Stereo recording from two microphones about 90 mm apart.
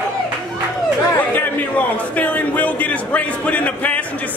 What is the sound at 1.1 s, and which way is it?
A man's voice, 20° left (ahead or behind).